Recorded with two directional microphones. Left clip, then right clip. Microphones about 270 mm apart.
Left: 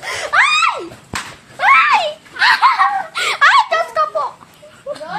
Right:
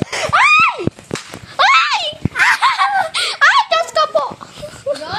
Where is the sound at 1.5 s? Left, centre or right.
Right.